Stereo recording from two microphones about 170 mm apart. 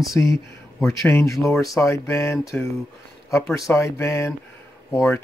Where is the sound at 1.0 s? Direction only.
15° left (ahead or behind).